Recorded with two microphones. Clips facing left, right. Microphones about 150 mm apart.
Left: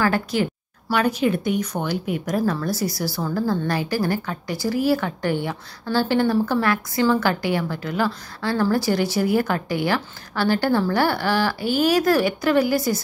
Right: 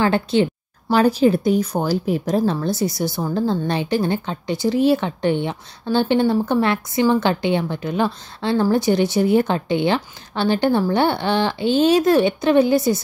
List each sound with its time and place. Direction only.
0.0 s speech: 25° right (ahead or behind)